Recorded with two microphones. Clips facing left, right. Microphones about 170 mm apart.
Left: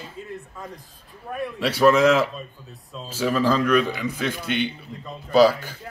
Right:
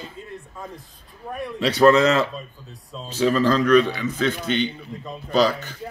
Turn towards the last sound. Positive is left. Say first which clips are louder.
# left 3 dB
turn(degrees=5)  # may be behind; listen again after turning